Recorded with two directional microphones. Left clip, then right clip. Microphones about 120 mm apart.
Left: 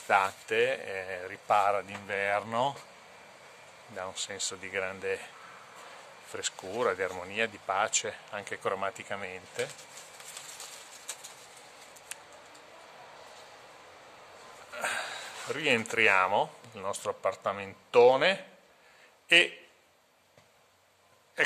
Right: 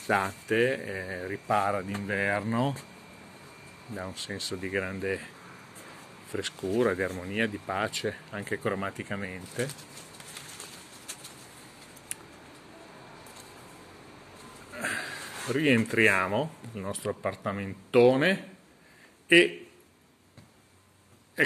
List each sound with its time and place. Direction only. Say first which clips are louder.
0.1 s speech: left 1 dB; 20° left (ahead or behind)
3.9 s speech: even; 20° left (ahead or behind)
6.3 s speech: right 5 dB; 30° left (ahead or behind)
14.7 s a sound: right 1 dB; 25° left (ahead or behind)
16.1 s speech: left 1 dB; 30° left (ahead or behind)